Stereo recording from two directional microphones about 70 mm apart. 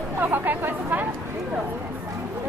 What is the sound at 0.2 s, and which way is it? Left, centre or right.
Chatter, right.